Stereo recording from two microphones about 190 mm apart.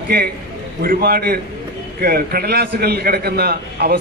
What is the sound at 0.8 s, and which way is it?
A man's voice, 55° right (ahead or behind).